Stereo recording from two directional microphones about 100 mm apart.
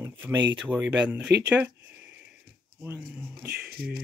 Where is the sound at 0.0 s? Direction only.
25° right (ahead or behind).